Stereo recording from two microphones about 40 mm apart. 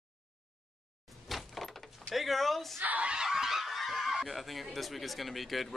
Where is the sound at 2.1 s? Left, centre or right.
Centre.